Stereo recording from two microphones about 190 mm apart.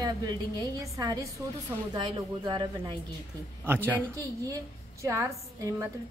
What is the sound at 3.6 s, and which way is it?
Speech, 10° right (ahead or behind).